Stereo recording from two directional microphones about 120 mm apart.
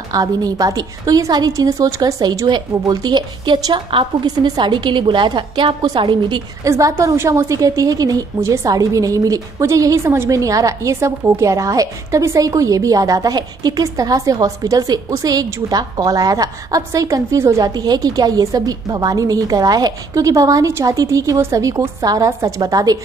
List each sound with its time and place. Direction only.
0.1 s a woman's voice: 30° right (ahead or behind)
6.6 s a woman's voice: 25° right (ahead or behind)